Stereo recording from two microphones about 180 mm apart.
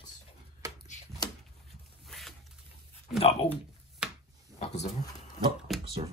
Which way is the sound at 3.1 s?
35° left (ahead or behind).